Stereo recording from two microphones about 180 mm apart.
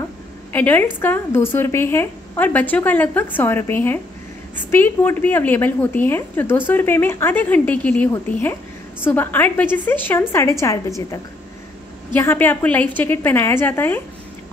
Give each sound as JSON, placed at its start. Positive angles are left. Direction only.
{"t": 0.5, "sound": "a woman's voice", "side_deg": 10}
{"t": 12.1, "sound": "a woman's voice", "side_deg": 10}